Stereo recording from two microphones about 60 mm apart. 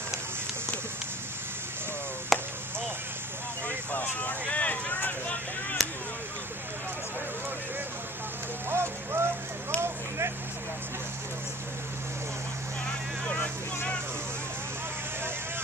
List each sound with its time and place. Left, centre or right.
2.3 s chop: centre
3.6 s vehicle: left
8.6 s a sound: right